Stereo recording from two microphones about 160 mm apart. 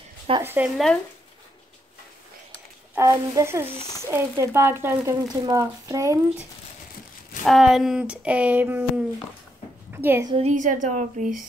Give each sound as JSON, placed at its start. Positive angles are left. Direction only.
{"t": 0.4, "sound": "speech", "side_deg": -15}
{"t": 2.9, "sound": "speech", "side_deg": -20}
{"t": 3.7, "sound": "a child's voice", "side_deg": 25}
{"t": 4.1, "sound": "speech", "side_deg": -15}
{"t": 7.4, "sound": "a woman's voice", "side_deg": 0}
{"t": 10.3, "sound": "a woman's voice", "side_deg": -45}